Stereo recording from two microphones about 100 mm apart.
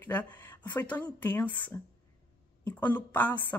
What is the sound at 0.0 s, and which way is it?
A woman's voice, 15° left (ahead or behind).